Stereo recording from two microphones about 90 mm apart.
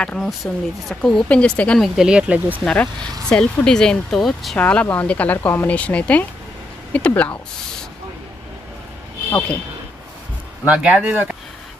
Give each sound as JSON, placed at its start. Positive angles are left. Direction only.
{"t": 0.0, "sound": "speech", "side_deg": 10}
{"t": 1.8, "sound": "speech", "side_deg": -5}
{"t": 2.6, "sound": "speech", "side_deg": 10}
{"t": 4.6, "sound": "speech", "side_deg": 15}
{"t": 10.6, "sound": "speech", "side_deg": -15}